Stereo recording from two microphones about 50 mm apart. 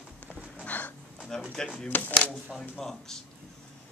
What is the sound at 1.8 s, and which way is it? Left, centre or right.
Speech, left.